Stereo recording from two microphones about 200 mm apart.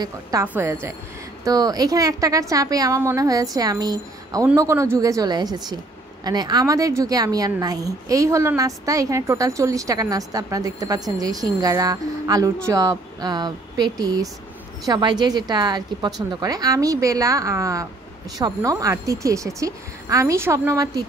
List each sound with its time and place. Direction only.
0.0 s speech: 15° right (ahead or behind)